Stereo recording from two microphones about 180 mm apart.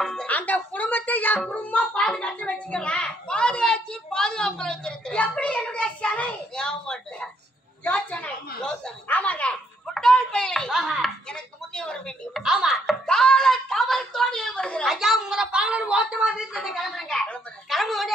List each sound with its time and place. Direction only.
0.0 s music: 5° left (ahead or behind)
7.8 s a sound: 10° left (ahead or behind)
11.7 s music: 5° left (ahead or behind)